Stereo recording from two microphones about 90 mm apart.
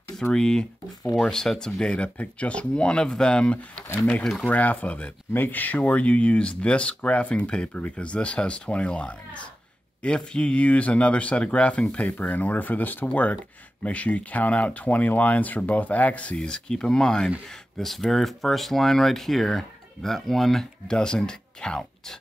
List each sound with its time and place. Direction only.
0.2 s speech: 10° left (ahead or behind)
4.5 s speech: 20° left (ahead or behind)